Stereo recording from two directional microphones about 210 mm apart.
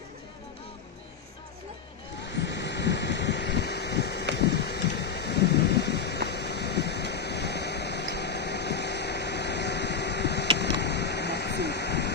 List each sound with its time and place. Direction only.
2.3 s vehicle: 55° left (ahead or behind)
4.4 s thunder: 50° left (ahead or behind)
10.6 s a sound: 55° left (ahead or behind)